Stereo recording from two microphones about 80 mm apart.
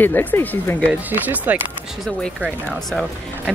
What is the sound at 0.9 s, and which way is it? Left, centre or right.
Speech, right.